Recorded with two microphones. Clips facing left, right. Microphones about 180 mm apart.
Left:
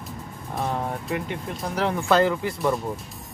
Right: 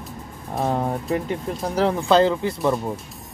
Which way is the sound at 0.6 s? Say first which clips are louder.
Right 5 dB; 35° right (ahead or behind).